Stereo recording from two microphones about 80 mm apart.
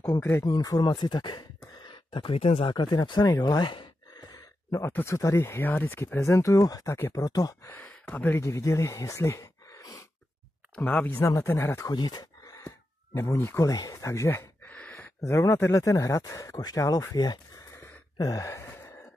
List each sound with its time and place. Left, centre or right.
0.2 s speech: left
0.5 s speech: left
4.2 s a sound: left
4.8 s speech: left
6.1 s speech: left
7.6 s speech: left
8.4 s speech: left
11.1 s speech: left
11.9 s a sound: left
14.0 s speech: left
14.6 s a sound: left
15.7 s speech: left
18.1 s gasp: left
18.7 s sigh: left